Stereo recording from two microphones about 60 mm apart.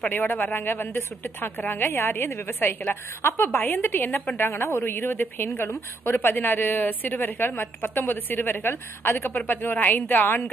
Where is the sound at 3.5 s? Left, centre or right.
Left.